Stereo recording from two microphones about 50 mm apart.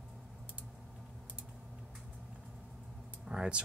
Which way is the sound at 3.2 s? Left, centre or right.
Centre.